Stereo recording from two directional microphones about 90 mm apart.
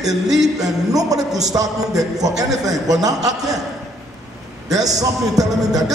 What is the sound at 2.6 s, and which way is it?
A man's voice, 40° right (ahead or behind).